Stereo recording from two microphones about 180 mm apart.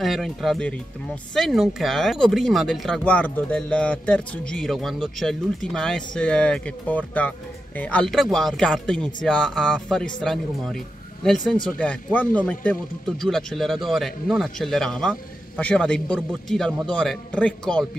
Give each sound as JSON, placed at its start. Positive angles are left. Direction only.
{"t": 0.0, "sound": "speech", "side_deg": 0}